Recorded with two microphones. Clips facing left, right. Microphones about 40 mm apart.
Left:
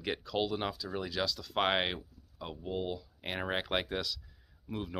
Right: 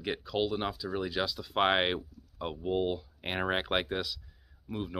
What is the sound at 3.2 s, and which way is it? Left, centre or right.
Speech, right.